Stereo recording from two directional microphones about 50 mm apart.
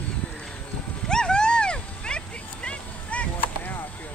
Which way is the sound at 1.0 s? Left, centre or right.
Centre.